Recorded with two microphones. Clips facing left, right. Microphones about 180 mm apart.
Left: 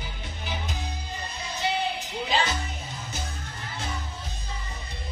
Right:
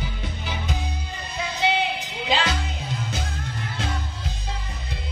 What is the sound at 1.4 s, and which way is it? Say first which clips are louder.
Music: right 5 dB; 90° right.